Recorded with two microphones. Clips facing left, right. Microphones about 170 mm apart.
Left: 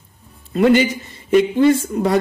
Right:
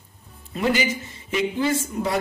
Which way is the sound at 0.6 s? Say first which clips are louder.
Left 9 dB; 60° left (ahead or behind).